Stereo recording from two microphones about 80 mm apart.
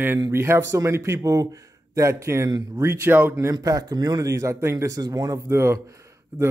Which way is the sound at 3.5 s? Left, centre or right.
Right.